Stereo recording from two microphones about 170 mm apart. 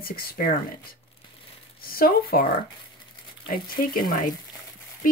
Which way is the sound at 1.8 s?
60° left (ahead or behind).